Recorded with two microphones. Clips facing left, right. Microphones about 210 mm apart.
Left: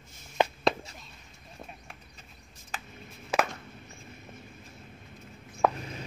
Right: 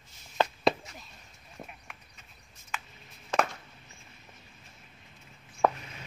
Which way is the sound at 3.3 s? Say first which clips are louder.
Even; 5° left (ahead or behind).